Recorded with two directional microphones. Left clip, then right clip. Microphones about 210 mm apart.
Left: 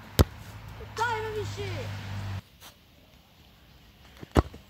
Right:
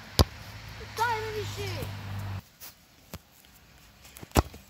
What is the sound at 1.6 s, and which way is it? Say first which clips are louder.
Speech: even; 25° left (ahead or behind).